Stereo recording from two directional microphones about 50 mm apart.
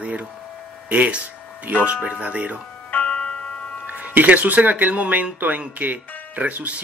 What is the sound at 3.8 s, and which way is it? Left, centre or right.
Speech, right.